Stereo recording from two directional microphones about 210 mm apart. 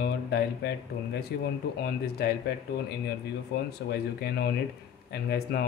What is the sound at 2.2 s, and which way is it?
Speech, 50° left (ahead or behind).